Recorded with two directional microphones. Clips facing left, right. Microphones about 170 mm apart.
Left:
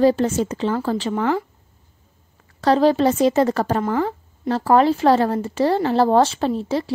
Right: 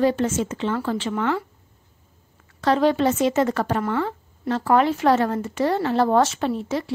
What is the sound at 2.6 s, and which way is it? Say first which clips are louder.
A woman's voice: left 3 dB; 35° left (ahead or behind).